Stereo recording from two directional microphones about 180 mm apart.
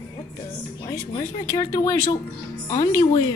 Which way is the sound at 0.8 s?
20° left (ahead or behind).